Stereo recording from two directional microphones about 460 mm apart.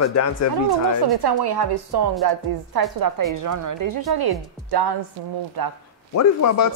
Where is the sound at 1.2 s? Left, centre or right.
Right.